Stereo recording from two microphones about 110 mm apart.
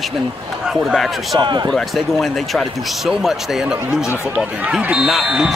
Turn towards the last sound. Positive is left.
turn(degrees=-5)  # may be behind; listen again after turning